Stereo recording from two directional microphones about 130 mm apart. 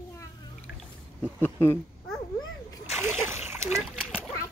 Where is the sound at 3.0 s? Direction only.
20° right (ahead or behind).